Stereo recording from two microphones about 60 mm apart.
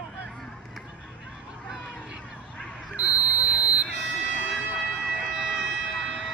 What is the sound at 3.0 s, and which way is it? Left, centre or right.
Buzzer, right.